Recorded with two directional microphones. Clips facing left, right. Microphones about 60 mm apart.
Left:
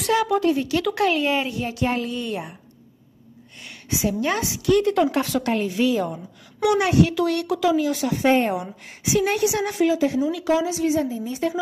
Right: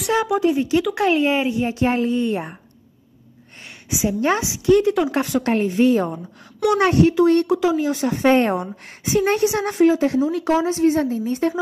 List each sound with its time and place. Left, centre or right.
0.3 s a woman's voice: centre
3.9 s a woman's voice: centre
4.8 s speech: centre
5.4 s speech: right
7.2 s speech: right
8.4 s a woman's voice: right